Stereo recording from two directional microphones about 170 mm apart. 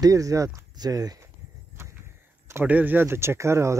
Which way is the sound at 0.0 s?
20° right (ahead or behind).